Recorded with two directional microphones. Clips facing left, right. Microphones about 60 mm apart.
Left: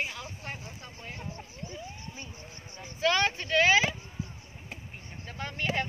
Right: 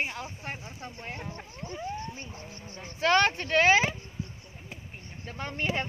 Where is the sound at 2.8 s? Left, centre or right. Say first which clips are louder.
Right 3 dB; right.